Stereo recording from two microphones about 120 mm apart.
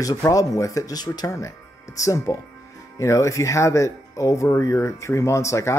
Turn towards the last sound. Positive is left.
turn(degrees=25)  # may be behind; listen again after turning